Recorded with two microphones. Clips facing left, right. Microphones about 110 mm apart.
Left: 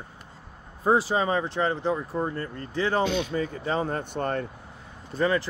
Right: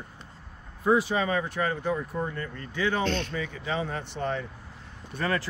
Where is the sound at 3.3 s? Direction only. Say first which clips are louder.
Left 4 dB; 40° left (ahead or behind).